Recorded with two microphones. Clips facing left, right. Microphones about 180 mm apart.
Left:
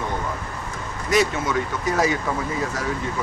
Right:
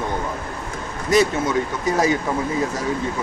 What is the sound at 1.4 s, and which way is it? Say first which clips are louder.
Speech: right 3 dB; 20° right (ahead or behind).